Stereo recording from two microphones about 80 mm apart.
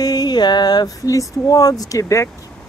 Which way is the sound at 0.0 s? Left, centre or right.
Left.